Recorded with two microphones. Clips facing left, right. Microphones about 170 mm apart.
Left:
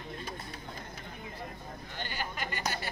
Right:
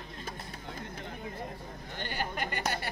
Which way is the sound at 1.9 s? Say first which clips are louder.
Right 3 dB; 50° right (ahead or behind).